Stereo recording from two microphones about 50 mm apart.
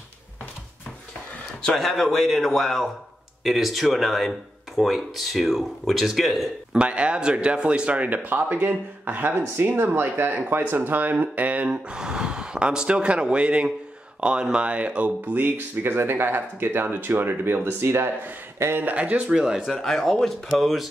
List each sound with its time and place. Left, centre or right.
1.8 s speech: centre
6.7 s speech: right
11.9 s speech: centre
15.3 s speech: right
18.9 s speech: right
19.6 s speech: centre